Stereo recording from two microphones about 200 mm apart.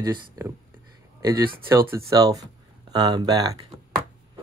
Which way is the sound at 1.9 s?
15° right (ahead or behind).